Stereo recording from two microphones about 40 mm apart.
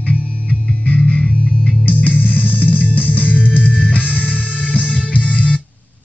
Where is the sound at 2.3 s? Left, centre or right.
Left.